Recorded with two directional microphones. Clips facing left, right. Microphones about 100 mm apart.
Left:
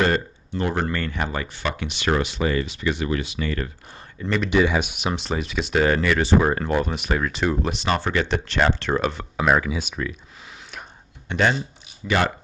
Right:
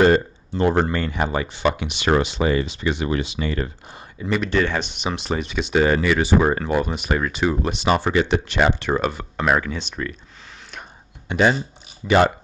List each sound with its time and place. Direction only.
0.0 s speech: 25° right (ahead or behind)
4.2 s speech: 5° right (ahead or behind)
4.5 s speech: 10° left (ahead or behind)
11.2 s speech: 5° right (ahead or behind)
12.0 s speech: 25° right (ahead or behind)